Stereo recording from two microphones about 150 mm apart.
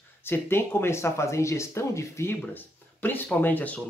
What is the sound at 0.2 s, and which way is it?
Speech, 15° left (ahead or behind).